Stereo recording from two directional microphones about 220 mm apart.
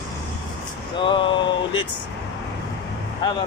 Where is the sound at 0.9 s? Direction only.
20° left (ahead or behind).